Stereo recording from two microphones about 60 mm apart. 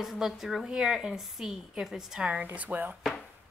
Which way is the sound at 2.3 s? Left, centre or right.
Right.